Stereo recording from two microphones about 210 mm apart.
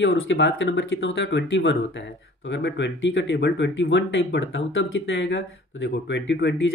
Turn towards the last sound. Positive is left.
turn(degrees=60)  # may be behind; listen again after turning